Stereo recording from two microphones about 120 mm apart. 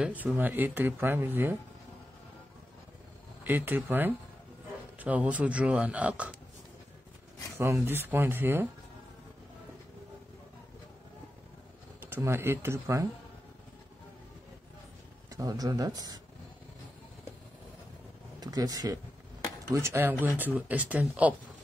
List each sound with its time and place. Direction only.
0.0 s speech: 15° right (ahead or behind)
3.4 s speech: 15° right (ahead or behind)
7.5 s speech: 25° right (ahead or behind)
12.0 s speech: 20° right (ahead or behind)
15.3 s speech: 30° right (ahead or behind)
18.4 s speech: 30° right (ahead or behind); by 21.4 s 10° right (ahead or behind)